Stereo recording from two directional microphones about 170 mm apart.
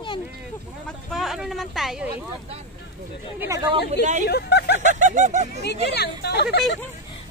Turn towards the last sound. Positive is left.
turn(degrees=75)  # may be behind; listen again after turning